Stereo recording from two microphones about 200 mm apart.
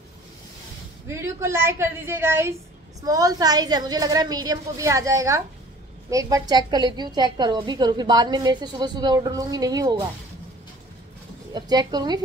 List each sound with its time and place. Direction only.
1.0 s a woman's voice: 15° right (ahead or behind)
11.5 s a woman's voice: 20° right (ahead or behind)